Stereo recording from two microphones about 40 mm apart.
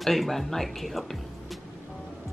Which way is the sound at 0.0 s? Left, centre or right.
Centre.